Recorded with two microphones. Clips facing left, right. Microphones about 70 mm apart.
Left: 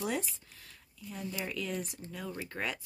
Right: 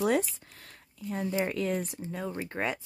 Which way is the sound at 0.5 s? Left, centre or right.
Right.